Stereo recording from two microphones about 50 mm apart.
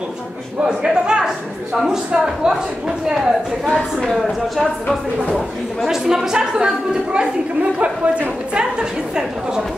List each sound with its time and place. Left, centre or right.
0.7 s a woman's voice: centre
5.9 s a woman's voice: centre